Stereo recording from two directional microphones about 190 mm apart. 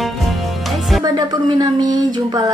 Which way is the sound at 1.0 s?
20° right (ahead or behind).